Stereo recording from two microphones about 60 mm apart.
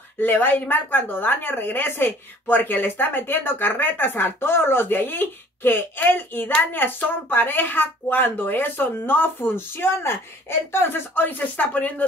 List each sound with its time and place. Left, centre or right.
0.2 s a woman's voice: left